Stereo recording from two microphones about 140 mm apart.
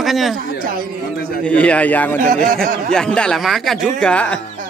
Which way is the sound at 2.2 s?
80° right.